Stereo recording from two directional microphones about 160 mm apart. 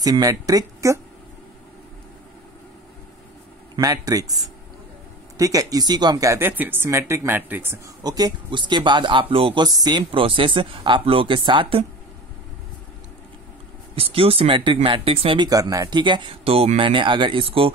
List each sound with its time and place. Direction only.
0.0 s speech: 25° right (ahead or behind)
3.7 s speech: 25° right (ahead or behind)
5.4 s speech: 20° right (ahead or behind)
13.9 s speech: 35° right (ahead or behind)